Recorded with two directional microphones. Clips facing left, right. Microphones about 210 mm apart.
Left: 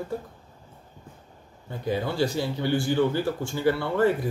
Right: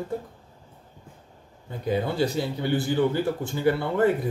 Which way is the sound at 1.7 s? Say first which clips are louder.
Right 2 dB; 20° right (ahead or behind).